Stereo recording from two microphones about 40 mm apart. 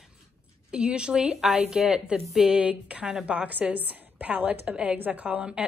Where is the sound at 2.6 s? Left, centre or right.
Right.